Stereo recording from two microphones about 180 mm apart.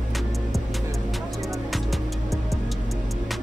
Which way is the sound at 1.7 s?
Centre (ahead or behind).